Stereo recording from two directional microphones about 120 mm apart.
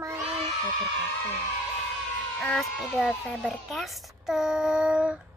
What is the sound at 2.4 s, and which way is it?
Speech, 10° left (ahead or behind).